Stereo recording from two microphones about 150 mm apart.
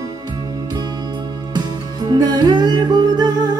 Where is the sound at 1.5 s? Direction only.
25° right (ahead or behind).